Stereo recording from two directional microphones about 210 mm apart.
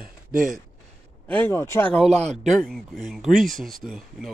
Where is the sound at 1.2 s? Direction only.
10° left (ahead or behind).